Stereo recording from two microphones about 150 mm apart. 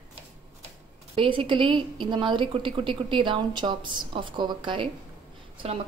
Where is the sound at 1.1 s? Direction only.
35° right (ahead or behind).